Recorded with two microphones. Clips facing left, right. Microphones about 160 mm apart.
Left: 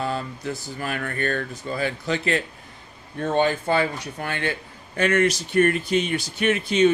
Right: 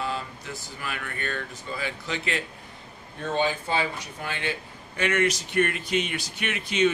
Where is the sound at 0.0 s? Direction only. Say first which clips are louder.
Left 5 dB; 45° left (ahead or behind).